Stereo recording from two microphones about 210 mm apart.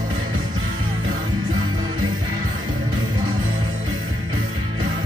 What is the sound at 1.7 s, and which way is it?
Music, 40° right (ahead or behind).